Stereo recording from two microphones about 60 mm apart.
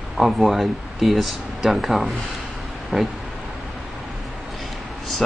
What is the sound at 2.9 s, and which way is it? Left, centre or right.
Speech, centre.